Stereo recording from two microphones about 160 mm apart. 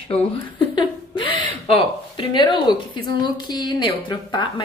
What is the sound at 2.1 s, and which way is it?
A woman's voice, 30° left (ahead or behind).